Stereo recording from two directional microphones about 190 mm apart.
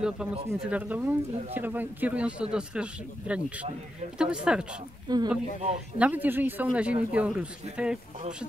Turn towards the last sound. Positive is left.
turn(degrees=-5)  # may be behind; listen again after turning